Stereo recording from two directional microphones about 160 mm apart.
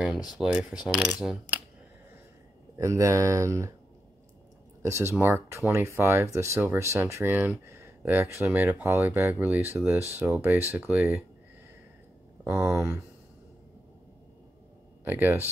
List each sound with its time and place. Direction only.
0.1 s speech: 25° left (ahead or behind)
0.4 s mechanisms: 5° right (ahead or behind)
2.8 s speech: 20° right (ahead or behind)
4.8 s speech: 15° right (ahead or behind)
12.5 s mechanisms: 5° right (ahead or behind)
15.0 s speech: 10° right (ahead or behind)